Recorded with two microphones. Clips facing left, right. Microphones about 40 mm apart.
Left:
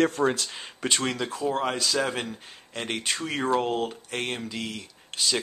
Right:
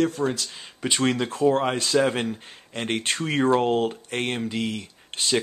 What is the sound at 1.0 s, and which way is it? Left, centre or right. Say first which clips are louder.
Speech: right 6 dB; right.